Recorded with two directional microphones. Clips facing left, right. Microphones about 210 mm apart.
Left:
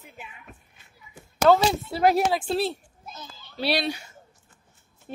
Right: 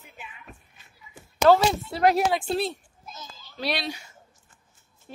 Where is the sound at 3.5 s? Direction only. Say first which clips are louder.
Left 4 dB; 30° left (ahead or behind).